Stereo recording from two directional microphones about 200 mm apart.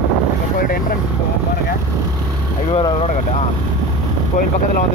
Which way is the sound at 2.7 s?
30° left (ahead or behind).